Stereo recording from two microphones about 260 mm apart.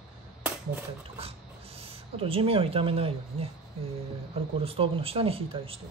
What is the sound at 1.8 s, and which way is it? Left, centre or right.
Speech, right.